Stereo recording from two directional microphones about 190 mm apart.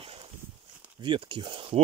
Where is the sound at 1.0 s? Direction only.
25° right (ahead or behind).